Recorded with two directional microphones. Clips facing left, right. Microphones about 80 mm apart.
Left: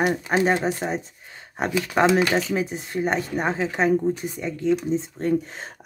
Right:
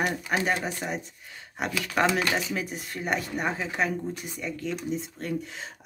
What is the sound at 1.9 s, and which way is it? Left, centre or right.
Speech, left.